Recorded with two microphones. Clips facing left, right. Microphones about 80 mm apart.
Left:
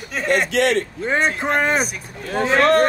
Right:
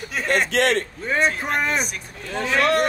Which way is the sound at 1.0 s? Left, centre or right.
Left.